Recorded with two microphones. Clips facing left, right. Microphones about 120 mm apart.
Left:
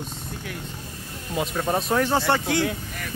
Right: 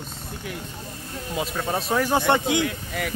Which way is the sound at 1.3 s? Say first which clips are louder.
Left 2 dB; centre (ahead or behind).